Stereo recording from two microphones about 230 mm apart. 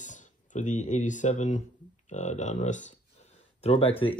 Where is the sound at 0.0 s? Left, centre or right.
Left.